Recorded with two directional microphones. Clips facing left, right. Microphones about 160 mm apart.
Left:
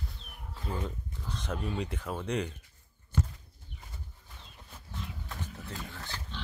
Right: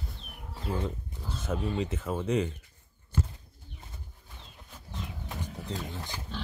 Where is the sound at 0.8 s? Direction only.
5° right (ahead or behind).